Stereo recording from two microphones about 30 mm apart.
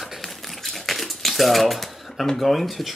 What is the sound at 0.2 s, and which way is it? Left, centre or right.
Typewriter, centre.